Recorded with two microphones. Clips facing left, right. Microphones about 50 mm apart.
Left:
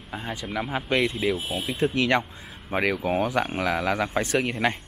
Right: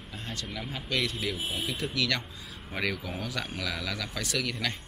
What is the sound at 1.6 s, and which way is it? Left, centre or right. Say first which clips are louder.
Speech: left 8 dB; left.